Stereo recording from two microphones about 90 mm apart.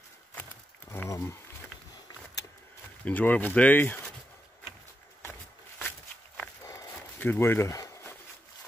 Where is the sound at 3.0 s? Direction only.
20° left (ahead or behind).